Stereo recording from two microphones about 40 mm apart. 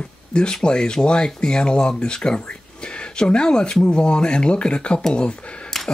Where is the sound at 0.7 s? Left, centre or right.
Left.